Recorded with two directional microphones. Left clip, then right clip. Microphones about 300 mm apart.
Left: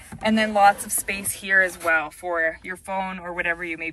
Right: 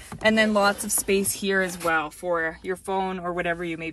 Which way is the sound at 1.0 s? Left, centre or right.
Centre.